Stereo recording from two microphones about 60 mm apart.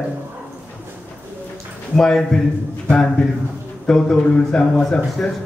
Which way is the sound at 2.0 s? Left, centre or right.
Centre.